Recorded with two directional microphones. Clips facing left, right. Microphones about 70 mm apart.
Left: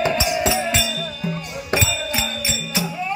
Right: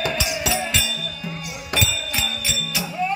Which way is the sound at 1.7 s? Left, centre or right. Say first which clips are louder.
Left 3 dB; left.